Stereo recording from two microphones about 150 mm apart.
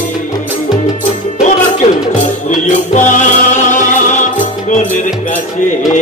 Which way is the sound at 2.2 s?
55° left (ahead or behind).